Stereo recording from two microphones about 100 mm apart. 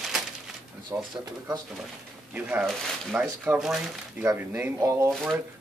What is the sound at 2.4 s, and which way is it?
Speech, 15° right (ahead or behind).